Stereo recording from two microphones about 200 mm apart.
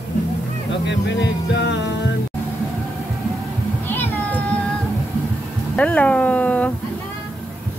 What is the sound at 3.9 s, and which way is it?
Cat, 10° left (ahead or behind).